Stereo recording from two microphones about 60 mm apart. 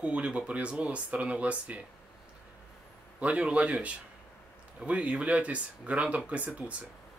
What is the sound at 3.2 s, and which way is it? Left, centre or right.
Speech, centre.